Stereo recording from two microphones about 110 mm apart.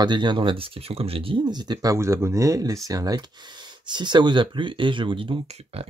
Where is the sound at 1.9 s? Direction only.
25° right (ahead or behind); by 5.4 s 50° right (ahead or behind).